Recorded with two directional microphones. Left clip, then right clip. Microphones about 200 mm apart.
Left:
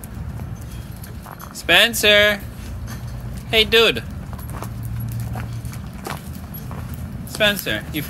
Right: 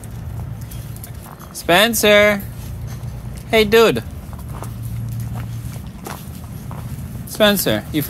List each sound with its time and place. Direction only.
1.7 s speech: 15° right (ahead or behind)
3.4 s speech: 20° right (ahead or behind)
7.3 s speech: 30° right (ahead or behind)